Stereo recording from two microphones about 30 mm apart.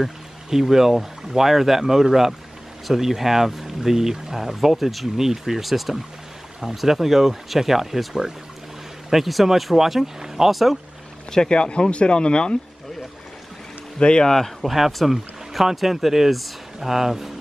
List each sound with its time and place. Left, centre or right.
0.0 s speech: centre
10.5 s speech: centre
11.4 s speech: left
13.9 s speech: left
14.6 s speech: centre